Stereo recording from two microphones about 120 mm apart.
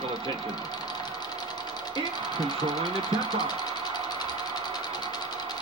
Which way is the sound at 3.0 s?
35° left (ahead or behind).